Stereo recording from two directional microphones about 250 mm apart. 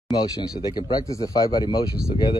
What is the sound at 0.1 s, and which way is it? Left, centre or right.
Speech, centre.